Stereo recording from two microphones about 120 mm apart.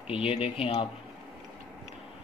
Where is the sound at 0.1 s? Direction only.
55° left (ahead or behind).